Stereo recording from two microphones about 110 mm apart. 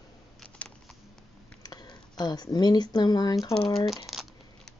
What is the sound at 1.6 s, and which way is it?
Speech, 35° left (ahead or behind).